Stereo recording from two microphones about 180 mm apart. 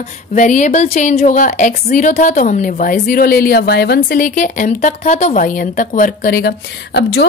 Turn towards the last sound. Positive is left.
turn(degrees=65)  # may be behind; listen again after turning